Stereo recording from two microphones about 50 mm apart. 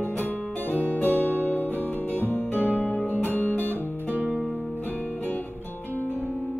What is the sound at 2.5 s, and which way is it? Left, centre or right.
Music, right.